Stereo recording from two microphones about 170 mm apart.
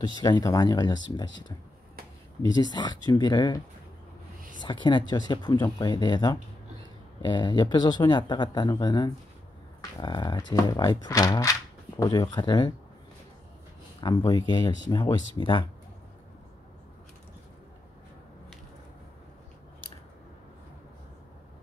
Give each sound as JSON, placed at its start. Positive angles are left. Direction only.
{"t": 0.0, "sound": "speech", "side_deg": 25}
{"t": 2.4, "sound": "speech", "side_deg": 25}
{"t": 14.0, "sound": "speech", "side_deg": 25}